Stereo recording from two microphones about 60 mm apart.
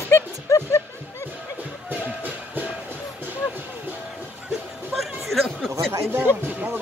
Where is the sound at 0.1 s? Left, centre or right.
Left.